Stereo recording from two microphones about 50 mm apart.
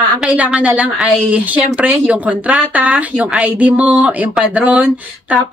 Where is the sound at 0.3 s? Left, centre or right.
Right.